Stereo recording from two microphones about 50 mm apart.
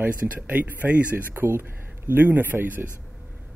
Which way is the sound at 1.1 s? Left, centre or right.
Right.